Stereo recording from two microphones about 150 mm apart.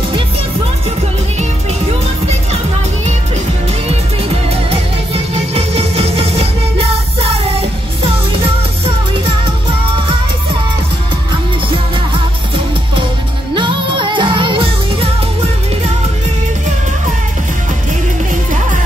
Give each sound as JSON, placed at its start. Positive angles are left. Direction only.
{"t": 4.6, "sound": "music", "side_deg": -40}
{"t": 13.6, "sound": "music", "side_deg": -35}